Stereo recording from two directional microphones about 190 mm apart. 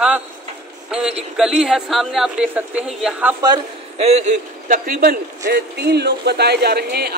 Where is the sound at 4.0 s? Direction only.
35° right (ahead or behind).